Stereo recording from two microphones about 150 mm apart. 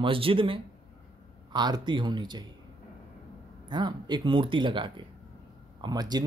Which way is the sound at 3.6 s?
30° right (ahead or behind).